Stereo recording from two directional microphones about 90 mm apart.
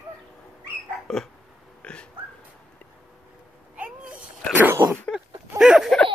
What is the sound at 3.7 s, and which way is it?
Cat, 15° right (ahead or behind).